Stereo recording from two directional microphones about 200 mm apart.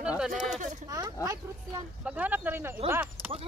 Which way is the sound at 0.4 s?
40° right (ahead or behind).